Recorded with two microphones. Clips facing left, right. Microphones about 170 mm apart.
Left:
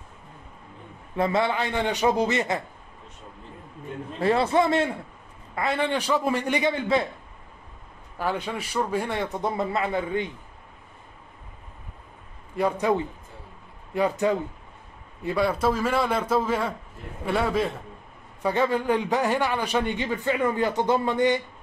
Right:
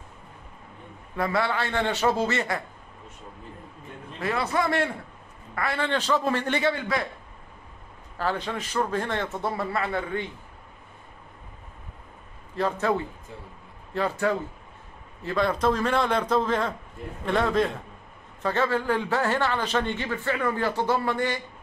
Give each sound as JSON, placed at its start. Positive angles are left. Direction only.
{"t": 1.1, "sound": "a man's voice", "side_deg": 25}
{"t": 4.2, "sound": "a man's voice", "side_deg": 30}
{"t": 8.2, "sound": "a man's voice", "side_deg": 10}
{"t": 12.5, "sound": "a man's voice", "side_deg": 15}